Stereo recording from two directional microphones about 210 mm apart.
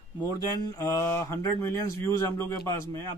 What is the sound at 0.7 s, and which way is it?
Speech, 15° left (ahead or behind).